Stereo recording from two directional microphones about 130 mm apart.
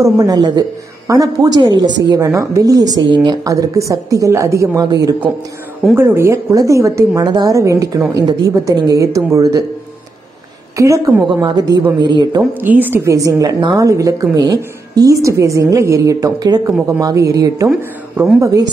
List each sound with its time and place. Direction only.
0.0 s a woman's voice: 30° right (ahead or behind)
5.9 s a woman's voice: 20° right (ahead or behind)
10.8 s a woman's voice: 25° right (ahead or behind)
12.4 s a woman's voice: 15° right (ahead or behind)